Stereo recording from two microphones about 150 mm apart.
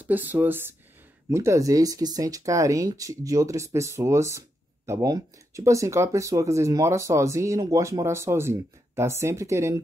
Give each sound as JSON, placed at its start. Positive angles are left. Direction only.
{"t": 0.0, "sound": "speech", "side_deg": -10}